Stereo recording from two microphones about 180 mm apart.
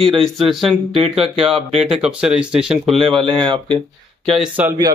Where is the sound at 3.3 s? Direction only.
25° right (ahead or behind).